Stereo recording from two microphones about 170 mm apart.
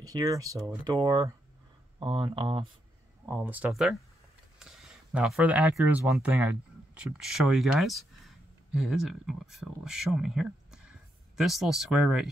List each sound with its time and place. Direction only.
0.0 s speech: 20° right (ahead or behind)
3.3 s speech: 10° right (ahead or behind)